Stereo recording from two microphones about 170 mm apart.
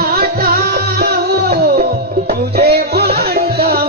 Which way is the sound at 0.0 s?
65° right (ahead or behind).